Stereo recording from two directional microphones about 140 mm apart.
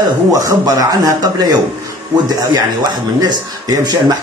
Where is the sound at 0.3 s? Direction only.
25° right (ahead or behind).